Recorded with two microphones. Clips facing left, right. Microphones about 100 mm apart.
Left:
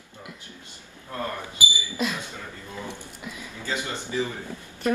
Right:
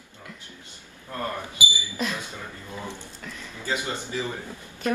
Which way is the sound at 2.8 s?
10° left (ahead or behind).